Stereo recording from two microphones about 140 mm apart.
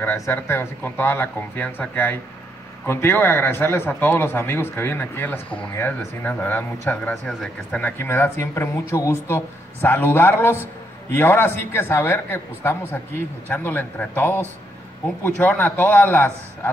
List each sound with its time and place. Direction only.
0.0 s speech: 15° left (ahead or behind)
8.0 s speech: 15° left (ahead or behind)